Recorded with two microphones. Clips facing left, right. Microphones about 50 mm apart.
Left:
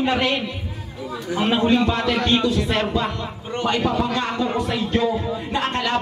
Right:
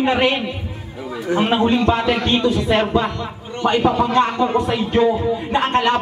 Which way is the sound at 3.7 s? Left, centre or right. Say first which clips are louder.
Right 5 dB; right.